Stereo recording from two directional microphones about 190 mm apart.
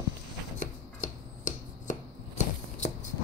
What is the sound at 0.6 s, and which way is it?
Chopping, 40° left (ahead or behind).